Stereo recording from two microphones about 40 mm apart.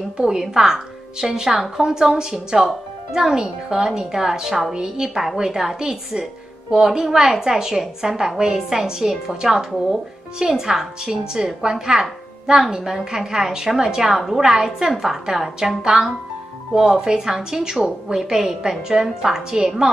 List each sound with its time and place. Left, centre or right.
0.2 s a woman's voice: centre